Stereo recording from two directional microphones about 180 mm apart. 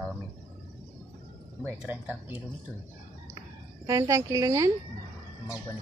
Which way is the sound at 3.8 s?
15° right (ahead or behind).